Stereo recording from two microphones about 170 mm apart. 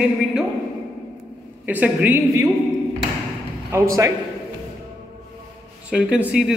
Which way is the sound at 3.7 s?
15° right (ahead or behind).